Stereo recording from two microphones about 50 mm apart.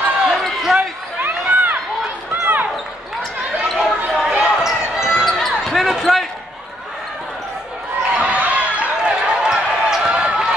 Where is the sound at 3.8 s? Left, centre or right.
Centre.